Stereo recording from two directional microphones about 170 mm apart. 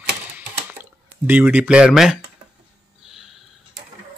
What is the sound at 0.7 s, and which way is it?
Speech, 10° right (ahead or behind).